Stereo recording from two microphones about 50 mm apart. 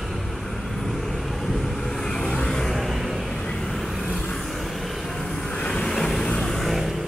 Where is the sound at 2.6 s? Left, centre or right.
Centre.